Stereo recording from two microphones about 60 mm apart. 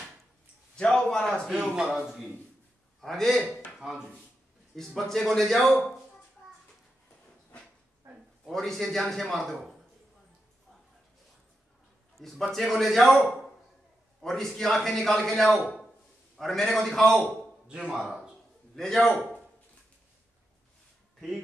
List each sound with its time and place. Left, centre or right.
0.7 s a sound: centre
1.5 s speech: centre
3.0 s a man's voice: centre
3.5 s a sound: centre
4.7 s a man's voice: centre
8.0 s a sound: right
8.5 s a man's voice: centre
12.2 s a man's voice: centre
14.2 s a man's voice: centre
17.6 s speech: centre
18.8 s a man's voice: centre